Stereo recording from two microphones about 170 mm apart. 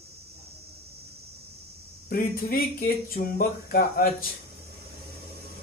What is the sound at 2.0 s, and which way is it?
Speech, 60° left (ahead or behind).